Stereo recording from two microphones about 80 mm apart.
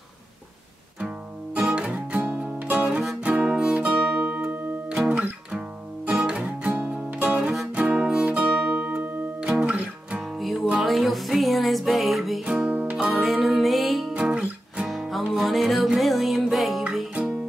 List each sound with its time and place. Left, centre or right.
0.9 s music: centre
3.0 s music: centre
12.9 s music: centre